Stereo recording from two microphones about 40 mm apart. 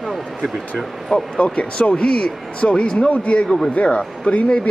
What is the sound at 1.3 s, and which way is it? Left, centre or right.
Speech, left.